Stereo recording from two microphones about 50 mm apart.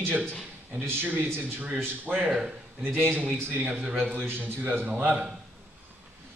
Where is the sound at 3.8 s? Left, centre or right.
Right.